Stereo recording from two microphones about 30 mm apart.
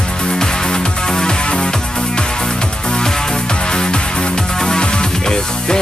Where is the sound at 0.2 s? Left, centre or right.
Left.